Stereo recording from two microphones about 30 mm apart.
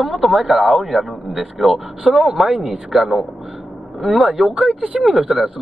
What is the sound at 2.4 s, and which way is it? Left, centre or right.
Speech, right.